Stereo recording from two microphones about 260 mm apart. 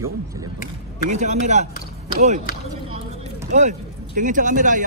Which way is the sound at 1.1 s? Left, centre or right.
Right.